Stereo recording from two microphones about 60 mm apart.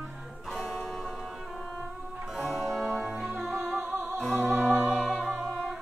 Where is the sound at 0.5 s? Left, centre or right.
Centre.